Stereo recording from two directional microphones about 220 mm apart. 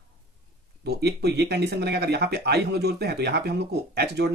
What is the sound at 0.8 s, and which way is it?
Speech, 50° right (ahead or behind).